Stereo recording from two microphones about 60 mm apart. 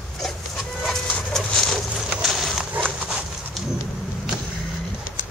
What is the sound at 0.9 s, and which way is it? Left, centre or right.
Dog, centre.